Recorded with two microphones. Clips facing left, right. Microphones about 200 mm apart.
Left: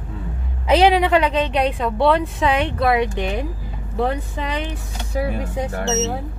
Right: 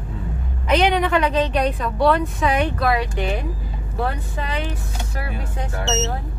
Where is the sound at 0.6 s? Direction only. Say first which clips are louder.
Left 3 dB; 30° left (ahead or behind).